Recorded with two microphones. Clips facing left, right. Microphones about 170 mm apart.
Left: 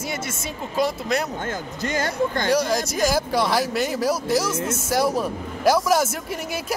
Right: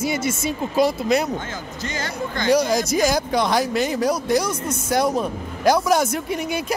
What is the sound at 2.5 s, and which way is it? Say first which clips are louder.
Speech: right 3 dB; centre (ahead or behind).